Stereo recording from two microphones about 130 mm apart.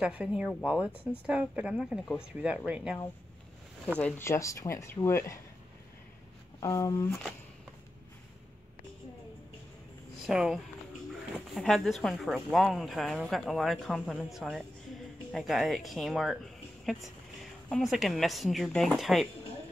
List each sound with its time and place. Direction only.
0.0 s speech: 10° right (ahead or behind)
4.2 s speech: 20° left (ahead or behind)
6.6 s speech: 25° left (ahead or behind)
10.2 s a woman's voice: 5° right (ahead or behind)